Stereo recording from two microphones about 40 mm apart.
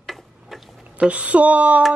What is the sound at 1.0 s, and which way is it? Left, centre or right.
Speech, right.